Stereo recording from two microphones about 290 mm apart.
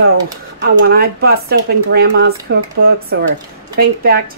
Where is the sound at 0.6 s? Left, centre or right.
Right.